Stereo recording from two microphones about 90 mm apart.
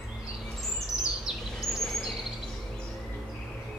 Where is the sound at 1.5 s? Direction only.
5° left (ahead or behind).